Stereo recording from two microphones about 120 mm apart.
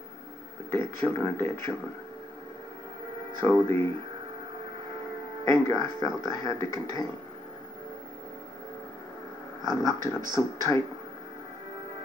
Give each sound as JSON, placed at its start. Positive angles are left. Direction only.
{"t": 0.7, "sound": "speech", "side_deg": 20}
{"t": 3.4, "sound": "speech", "side_deg": 25}
{"t": 5.4, "sound": "speech", "side_deg": 25}
{"t": 9.7, "sound": "speech", "side_deg": 25}